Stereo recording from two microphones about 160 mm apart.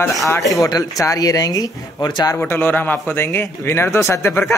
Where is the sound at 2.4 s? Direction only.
10° left (ahead or behind).